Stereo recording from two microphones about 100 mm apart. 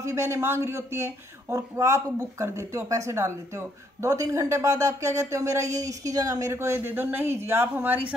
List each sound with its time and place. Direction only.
0.0 s speech: 30° right (ahead or behind)